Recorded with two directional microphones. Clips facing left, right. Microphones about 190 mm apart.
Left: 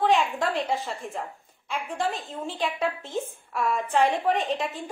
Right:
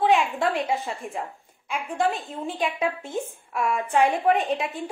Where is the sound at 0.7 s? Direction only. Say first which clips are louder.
Right 1 dB; 60° right (ahead or behind).